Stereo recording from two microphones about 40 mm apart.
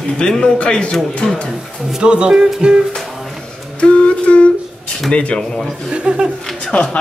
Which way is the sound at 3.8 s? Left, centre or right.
Left.